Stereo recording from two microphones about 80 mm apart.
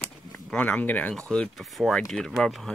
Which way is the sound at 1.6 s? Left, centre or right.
Centre.